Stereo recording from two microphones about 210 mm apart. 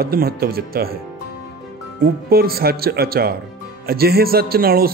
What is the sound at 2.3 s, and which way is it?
Speech, 45° right (ahead or behind).